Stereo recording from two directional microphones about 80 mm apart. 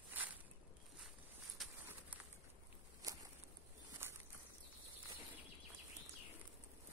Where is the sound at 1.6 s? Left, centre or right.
Centre.